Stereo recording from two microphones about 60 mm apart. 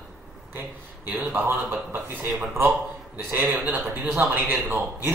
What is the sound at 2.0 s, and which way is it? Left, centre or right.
A man's voice, right.